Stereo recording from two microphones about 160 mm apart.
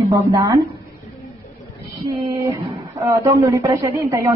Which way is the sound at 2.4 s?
20° right (ahead or behind).